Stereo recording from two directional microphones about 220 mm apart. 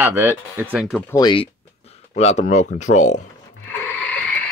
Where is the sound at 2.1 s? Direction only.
30° left (ahead or behind).